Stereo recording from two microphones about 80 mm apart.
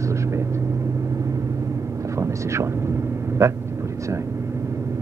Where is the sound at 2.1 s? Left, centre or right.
Right.